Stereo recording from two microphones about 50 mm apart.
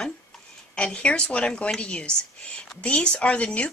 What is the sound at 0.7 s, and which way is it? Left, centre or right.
Speech, left.